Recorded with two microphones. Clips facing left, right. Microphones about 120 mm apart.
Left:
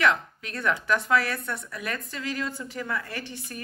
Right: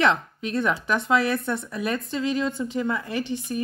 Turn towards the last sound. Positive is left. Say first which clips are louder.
# right 9 dB
turn(degrees=-20)  # may be behind; listen again after turning